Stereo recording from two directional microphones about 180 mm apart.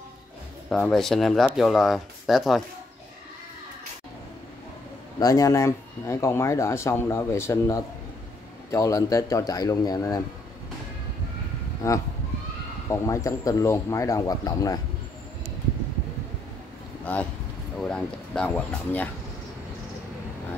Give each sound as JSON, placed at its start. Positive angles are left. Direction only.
{"t": 0.7, "sound": "speech", "side_deg": 0}
{"t": 5.2, "sound": "speech", "side_deg": 20}
{"t": 11.8, "sound": "speech", "side_deg": 15}
{"t": 17.0, "sound": "speech", "side_deg": 10}